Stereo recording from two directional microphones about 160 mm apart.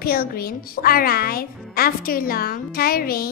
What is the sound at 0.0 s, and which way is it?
Speech, 70° left (ahead or behind).